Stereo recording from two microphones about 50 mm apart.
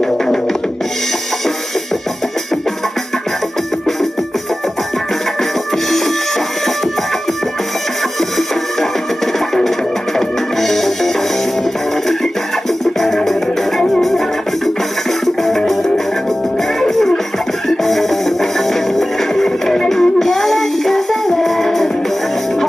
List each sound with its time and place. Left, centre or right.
5.9 s music: centre
10.1 s music: centre
13.0 s music: centre
15.2 s music: centre